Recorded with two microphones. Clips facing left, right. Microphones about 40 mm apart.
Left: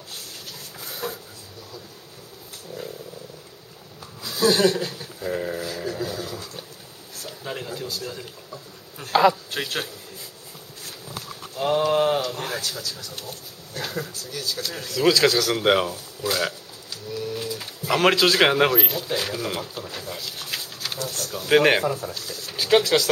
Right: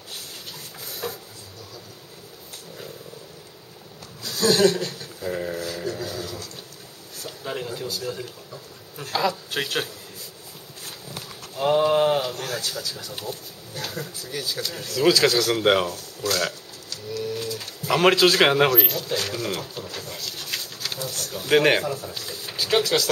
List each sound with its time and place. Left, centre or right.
0.7 s a sound: centre
4.2 s a sound: centre
7.2 s speech: centre
9.1 s a man's voice: left
9.5 s speech: centre
10.8 s dog: centre
11.5 s speech: centre
12.4 s speech: centre
12.6 s speech: centre
13.7 s speech: centre
14.1 s speech: centre
14.6 s speech: centre
22.1 s speech: centre
22.6 s speech: centre